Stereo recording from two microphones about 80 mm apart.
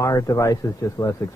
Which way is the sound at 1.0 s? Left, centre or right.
Left.